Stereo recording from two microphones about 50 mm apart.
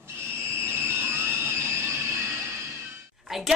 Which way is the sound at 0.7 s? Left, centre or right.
Right.